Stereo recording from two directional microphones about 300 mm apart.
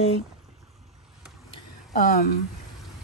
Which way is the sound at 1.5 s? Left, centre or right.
Left.